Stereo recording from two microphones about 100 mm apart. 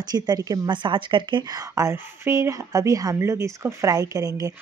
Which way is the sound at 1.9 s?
25° right (ahead or behind).